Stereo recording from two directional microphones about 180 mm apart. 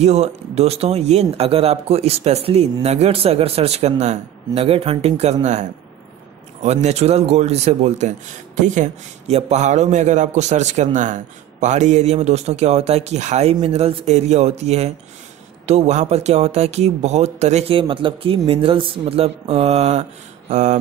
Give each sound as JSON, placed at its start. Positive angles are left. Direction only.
{"t": 0.0, "sound": "a man's voice", "side_deg": -35}